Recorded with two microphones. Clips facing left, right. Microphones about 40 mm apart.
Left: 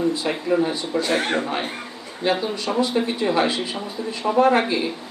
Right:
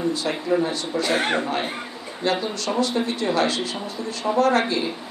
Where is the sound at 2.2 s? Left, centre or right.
Centre.